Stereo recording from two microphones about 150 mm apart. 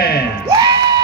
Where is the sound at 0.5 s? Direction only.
30° right (ahead or behind).